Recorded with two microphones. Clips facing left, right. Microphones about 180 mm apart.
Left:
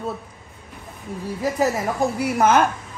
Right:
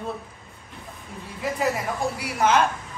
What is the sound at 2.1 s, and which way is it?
Speech, 50° left (ahead or behind).